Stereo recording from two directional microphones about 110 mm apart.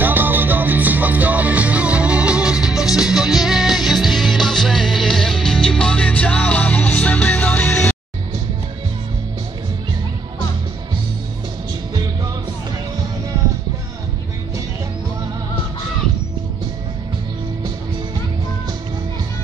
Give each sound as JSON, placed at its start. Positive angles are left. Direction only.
{"t": 0.0, "sound": "music", "side_deg": -20}